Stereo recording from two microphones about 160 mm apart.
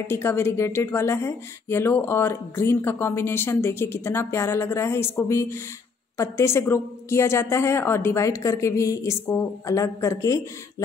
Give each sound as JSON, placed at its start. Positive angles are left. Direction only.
{"t": 0.0, "sound": "speech", "side_deg": 15}